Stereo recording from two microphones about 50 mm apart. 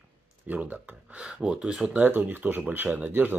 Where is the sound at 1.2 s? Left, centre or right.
Centre.